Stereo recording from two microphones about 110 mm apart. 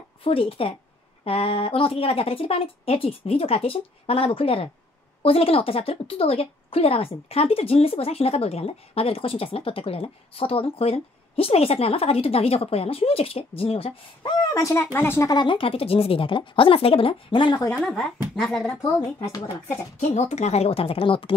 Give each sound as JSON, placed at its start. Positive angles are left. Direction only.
{"t": 0.2, "sound": "speech", "side_deg": 60}
{"t": 14.4, "sound": "speech", "side_deg": 30}
{"t": 15.2, "sound": "speech", "side_deg": 45}
{"t": 17.7, "sound": "speech", "side_deg": 5}
{"t": 20.0, "sound": "speech", "side_deg": 90}